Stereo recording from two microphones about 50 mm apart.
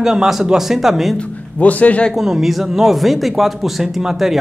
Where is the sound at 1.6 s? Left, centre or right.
Left.